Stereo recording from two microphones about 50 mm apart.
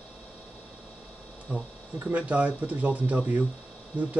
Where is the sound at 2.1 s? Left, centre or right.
Right.